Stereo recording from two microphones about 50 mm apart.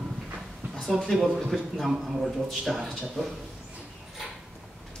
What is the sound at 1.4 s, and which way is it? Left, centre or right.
Speech, centre.